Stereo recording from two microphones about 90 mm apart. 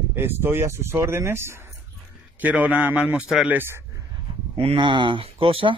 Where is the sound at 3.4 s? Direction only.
25° right (ahead or behind).